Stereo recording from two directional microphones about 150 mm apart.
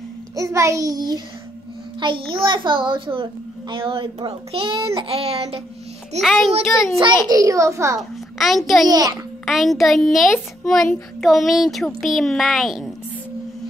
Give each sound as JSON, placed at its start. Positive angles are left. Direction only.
{"t": 0.4, "sound": "a child's voice", "side_deg": -20}
{"t": 4.7, "sound": "a child's voice", "side_deg": -20}
{"t": 5.0, "sound": "a child's voice", "side_deg": -40}
{"t": 6.2, "sound": "speech", "side_deg": 0}
{"t": 7.2, "sound": "a child's voice", "side_deg": -20}
{"t": 8.0, "sound": "a child's voice", "side_deg": 0}
{"t": 8.8, "sound": "a child's voice", "side_deg": -25}
{"t": 9.5, "sound": "speech", "side_deg": 0}